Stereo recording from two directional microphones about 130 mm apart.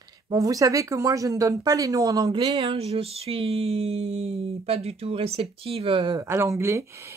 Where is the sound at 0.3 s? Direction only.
25° right (ahead or behind).